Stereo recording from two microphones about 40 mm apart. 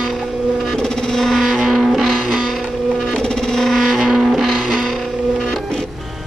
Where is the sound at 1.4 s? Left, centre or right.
Centre.